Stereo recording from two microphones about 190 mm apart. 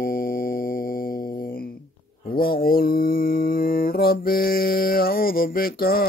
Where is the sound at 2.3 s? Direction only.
50° left (ahead or behind).